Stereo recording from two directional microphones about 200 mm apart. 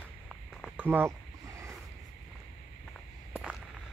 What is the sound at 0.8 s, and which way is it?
Speech, 10° right (ahead or behind).